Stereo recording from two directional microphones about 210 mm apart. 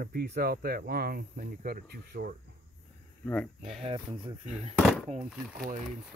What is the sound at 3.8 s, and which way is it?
Speech, 25° right (ahead or behind).